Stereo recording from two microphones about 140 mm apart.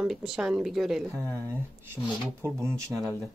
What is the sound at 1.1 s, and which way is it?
Speech, 20° right (ahead or behind).